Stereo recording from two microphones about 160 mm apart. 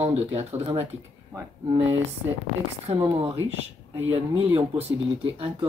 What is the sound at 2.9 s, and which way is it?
Speech, 40° right (ahead or behind).